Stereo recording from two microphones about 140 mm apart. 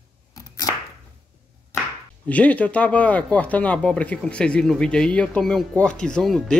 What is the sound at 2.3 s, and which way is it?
Speech, 10° left (ahead or behind).